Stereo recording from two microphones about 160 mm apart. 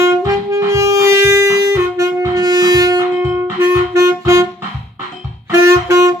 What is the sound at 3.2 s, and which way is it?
Music, 15° right (ahead or behind).